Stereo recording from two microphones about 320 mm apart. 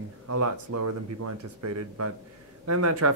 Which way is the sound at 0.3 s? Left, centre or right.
Right.